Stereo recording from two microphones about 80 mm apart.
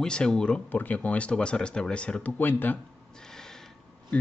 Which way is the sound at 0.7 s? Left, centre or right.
Left.